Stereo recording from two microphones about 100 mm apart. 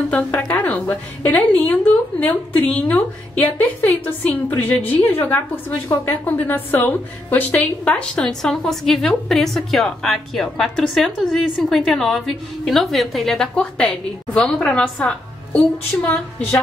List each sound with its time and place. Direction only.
0.1 s a woman's voice: 15° left (ahead or behind)